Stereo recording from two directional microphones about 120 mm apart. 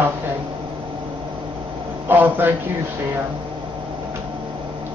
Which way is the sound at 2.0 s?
15° right (ahead or behind).